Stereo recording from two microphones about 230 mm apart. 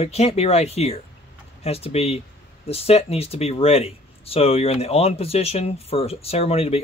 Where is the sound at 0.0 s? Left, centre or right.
Left.